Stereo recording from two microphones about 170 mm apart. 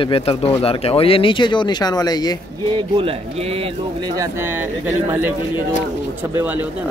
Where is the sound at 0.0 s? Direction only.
35° left (ahead or behind).